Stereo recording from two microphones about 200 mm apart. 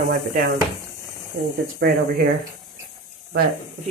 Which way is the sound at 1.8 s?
55° right (ahead or behind).